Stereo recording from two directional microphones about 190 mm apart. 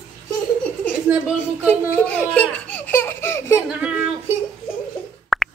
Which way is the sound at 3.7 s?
5° right (ahead or behind).